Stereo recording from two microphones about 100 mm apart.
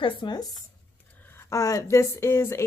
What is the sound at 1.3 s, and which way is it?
A woman's voice, 30° left (ahead or behind).